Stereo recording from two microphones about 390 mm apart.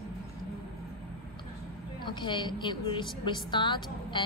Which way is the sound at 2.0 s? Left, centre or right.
Centre.